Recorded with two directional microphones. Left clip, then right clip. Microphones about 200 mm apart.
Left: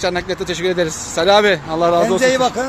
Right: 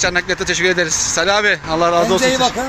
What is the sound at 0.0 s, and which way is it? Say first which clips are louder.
Speech: right 3 dB; centre (ahead or behind).